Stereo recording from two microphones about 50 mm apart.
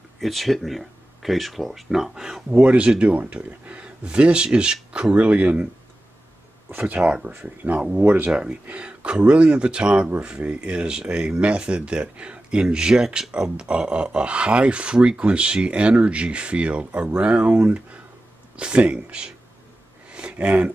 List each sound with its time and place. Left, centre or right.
0.2 s speech: centre
2.5 s speech: right
6.8 s speech: right
8.0 s speech: right
8.4 s speech: right
20.1 s a sound: right